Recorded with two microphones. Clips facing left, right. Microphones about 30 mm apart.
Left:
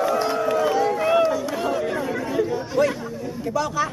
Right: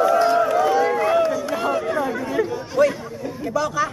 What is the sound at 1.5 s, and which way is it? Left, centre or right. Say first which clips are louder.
Chatter: right 2 dB; centre.